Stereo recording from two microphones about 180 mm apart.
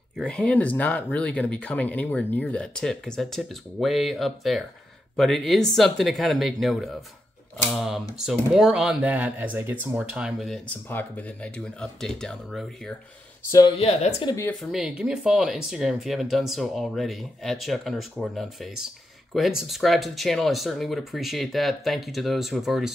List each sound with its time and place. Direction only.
0.2 s speech: 5° left (ahead or behind)
13.5 s speech: 20° left (ahead or behind)
13.7 s speech: 35° left (ahead or behind)
14.6 s speech: 5° right (ahead or behind)